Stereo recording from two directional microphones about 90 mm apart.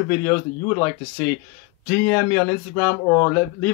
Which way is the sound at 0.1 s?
35° left (ahead or behind).